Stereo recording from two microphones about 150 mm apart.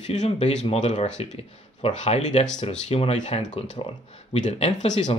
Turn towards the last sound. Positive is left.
turn(degrees=50)  # may be behind; listen again after turning